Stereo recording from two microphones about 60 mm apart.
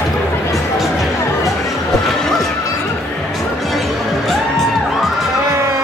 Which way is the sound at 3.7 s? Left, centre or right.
Centre.